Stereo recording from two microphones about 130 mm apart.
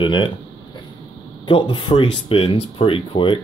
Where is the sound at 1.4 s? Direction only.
40° left (ahead or behind).